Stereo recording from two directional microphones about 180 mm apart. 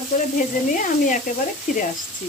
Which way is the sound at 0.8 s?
50° left (ahead or behind).